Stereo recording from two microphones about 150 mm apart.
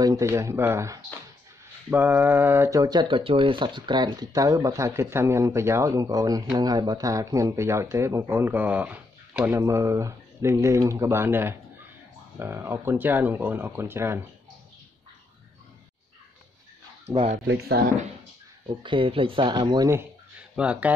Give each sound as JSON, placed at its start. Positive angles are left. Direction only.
{"t": 0.0, "sound": "speech", "side_deg": -20}
{"t": 17.0, "sound": "speech", "side_deg": -40}
{"t": 17.8, "sound": "speech", "side_deg": -90}
{"t": 18.8, "sound": "speech", "side_deg": -35}
{"t": 20.5, "sound": "speech", "side_deg": -10}